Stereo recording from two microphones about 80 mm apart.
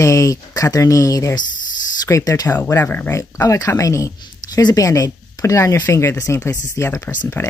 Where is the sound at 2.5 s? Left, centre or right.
Left.